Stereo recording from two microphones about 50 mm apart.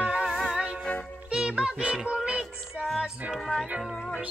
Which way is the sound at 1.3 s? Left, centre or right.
Centre.